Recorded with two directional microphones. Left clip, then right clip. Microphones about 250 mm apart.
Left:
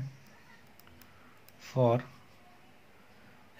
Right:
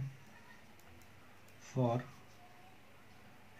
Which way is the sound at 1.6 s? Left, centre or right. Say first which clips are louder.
Left 9 dB; left.